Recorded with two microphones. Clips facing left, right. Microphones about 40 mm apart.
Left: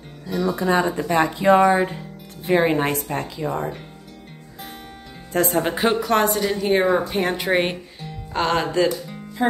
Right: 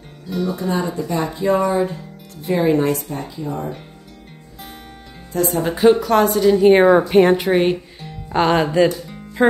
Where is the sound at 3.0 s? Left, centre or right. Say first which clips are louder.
Left 2 dB; left.